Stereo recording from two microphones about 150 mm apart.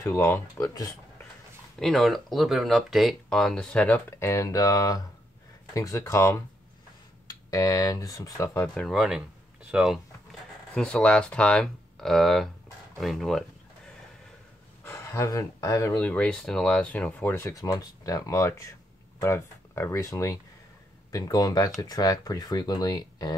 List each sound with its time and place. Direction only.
0.0 s speech: 15° left (ahead or behind)
1.8 s speech: centre (ahead or behind); by 8.5 s 25° left (ahead or behind)
8.5 s speech: 5° left (ahead or behind)
10.7 s speech: 5° left (ahead or behind)
14.8 s speech: 15° left (ahead or behind)
16.0 s speech: 10° left (ahead or behind); by 23.3 s 25° left (ahead or behind)